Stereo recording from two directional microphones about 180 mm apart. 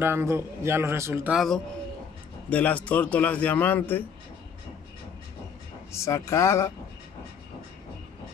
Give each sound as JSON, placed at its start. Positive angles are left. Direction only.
{"t": 0.0, "sound": "a man's voice", "side_deg": -15}
{"t": 1.3, "sound": "a man's voice", "side_deg": 0}
{"t": 5.9, "sound": "a man's voice", "side_deg": 15}